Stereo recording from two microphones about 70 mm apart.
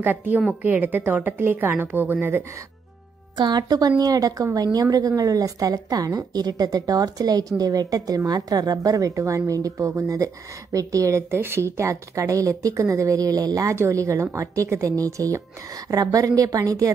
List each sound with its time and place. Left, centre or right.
0.0 s a woman's voice: right
3.3 s a woman's voice: right
13.7 s speech: right